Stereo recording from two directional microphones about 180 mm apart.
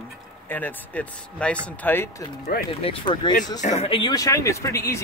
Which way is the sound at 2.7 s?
30° left (ahead or behind).